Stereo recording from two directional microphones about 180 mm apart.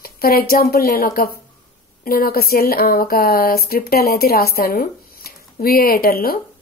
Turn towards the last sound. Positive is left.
turn(degrees=55)  # may be behind; listen again after turning